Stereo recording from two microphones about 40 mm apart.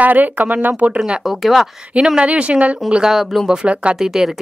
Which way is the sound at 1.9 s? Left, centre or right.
Centre.